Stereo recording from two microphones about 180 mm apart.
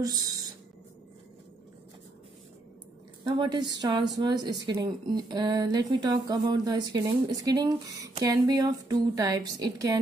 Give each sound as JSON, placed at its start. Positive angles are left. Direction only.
{"t": 3.3, "sound": "speech", "side_deg": -25}